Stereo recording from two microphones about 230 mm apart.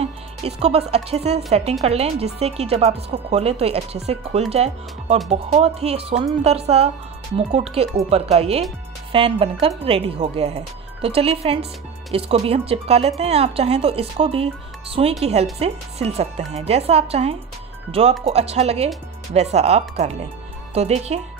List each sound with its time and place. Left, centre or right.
0.0 s speech: right